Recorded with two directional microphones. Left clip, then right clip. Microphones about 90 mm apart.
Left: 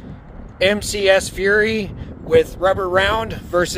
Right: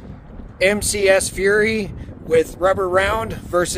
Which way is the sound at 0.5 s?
45° right (ahead or behind).